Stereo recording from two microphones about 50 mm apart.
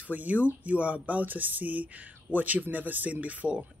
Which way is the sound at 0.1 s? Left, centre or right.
Right.